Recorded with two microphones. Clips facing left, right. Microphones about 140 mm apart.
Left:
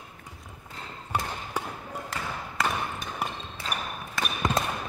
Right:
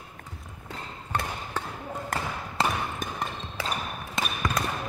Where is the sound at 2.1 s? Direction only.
50° right (ahead or behind).